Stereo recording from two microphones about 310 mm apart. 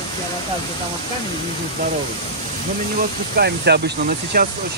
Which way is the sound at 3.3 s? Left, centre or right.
Right.